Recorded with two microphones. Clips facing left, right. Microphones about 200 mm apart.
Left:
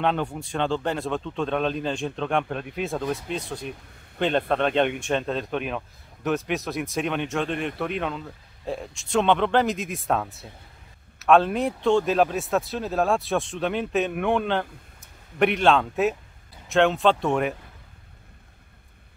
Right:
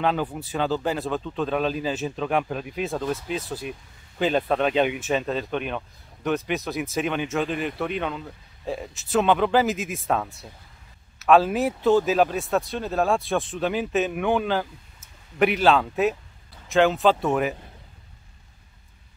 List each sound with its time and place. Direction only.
0.0 s speech: 5° right (ahead or behind)